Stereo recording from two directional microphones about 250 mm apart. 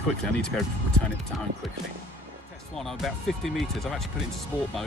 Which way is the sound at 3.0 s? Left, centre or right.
Centre.